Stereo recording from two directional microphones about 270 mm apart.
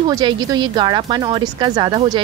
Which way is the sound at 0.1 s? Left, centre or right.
Centre.